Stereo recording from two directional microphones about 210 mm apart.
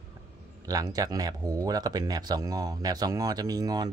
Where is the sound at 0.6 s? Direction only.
15° right (ahead or behind).